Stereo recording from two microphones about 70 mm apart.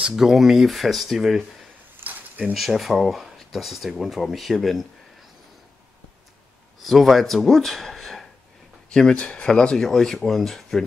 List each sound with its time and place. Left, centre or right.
0.0 s speech: centre
2.0 s a sound: centre
2.5 s speech: centre
6.8 s speech: centre